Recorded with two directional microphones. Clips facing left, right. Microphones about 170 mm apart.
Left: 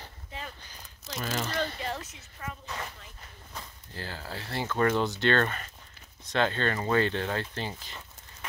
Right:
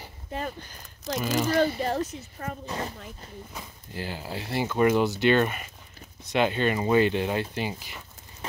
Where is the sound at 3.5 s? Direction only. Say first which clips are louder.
Right 2 dB; 15° right (ahead or behind).